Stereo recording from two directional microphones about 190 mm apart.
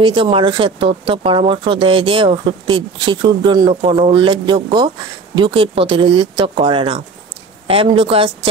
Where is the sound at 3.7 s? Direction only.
35° right (ahead or behind).